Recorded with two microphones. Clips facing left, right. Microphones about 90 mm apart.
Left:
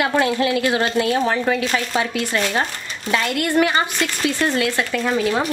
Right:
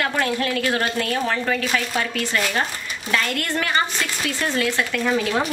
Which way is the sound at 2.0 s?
15° left (ahead or behind).